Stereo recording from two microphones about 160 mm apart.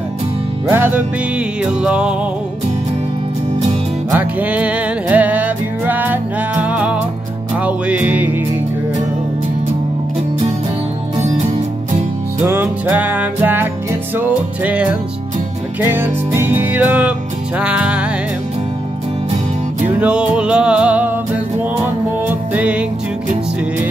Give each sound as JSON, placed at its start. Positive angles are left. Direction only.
{"t": 0.7, "sound": "music", "side_deg": -15}
{"t": 4.2, "sound": "music", "side_deg": -10}
{"t": 11.1, "sound": "music", "side_deg": -45}
{"t": 12.4, "sound": "music", "side_deg": -10}
{"t": 20.0, "sound": "music", "side_deg": -5}
{"t": 22.5, "sound": "music", "side_deg": -10}